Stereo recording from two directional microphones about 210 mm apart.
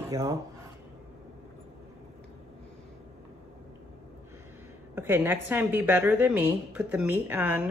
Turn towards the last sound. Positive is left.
turn(degrees=-10)  # may be behind; listen again after turning